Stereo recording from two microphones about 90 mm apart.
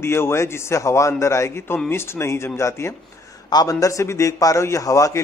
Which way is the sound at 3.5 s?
45° left (ahead or behind).